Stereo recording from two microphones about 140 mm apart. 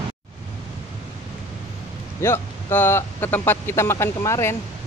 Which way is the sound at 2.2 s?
15° left (ahead or behind).